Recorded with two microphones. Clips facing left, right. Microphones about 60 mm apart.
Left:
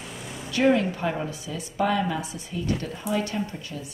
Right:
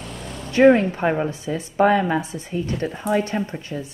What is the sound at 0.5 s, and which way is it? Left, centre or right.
A woman's voice, right.